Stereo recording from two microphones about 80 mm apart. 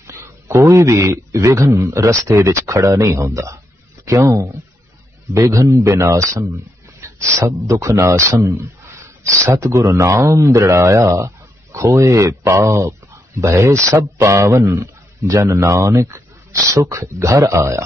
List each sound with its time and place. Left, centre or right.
0.0 s a man's voice: right